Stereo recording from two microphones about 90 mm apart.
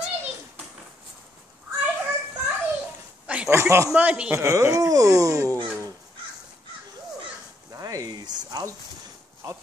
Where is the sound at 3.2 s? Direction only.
15° right (ahead or behind).